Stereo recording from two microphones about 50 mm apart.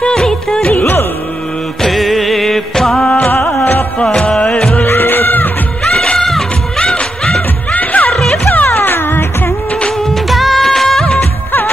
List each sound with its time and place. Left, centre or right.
0.0 s music: centre
0.7 s music: left
1.8 s music: centre
3.4 s music: left
4.0 s music: centre
4.8 s music: left
6.1 s music: centre
7.7 s music: left
8.1 s music: centre
8.6 s music: left
10.3 s music of bollywood: centre